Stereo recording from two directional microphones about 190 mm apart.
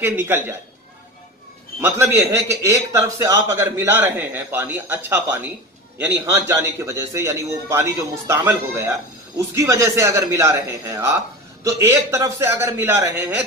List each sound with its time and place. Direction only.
0.0 s a man's voice: 10° right (ahead or behind)
1.8 s a man's voice: 15° right (ahead or behind)